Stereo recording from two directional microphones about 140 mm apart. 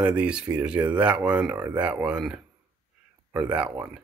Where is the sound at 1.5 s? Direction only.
25° right (ahead or behind).